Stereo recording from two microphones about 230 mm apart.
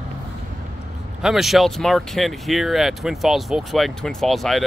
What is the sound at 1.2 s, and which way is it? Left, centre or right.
Speech, centre.